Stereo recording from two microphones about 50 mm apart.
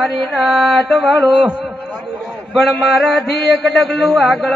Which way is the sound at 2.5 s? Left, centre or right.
Centre.